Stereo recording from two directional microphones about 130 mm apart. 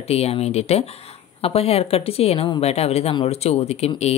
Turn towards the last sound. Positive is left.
turn(degrees=55)  # may be behind; listen again after turning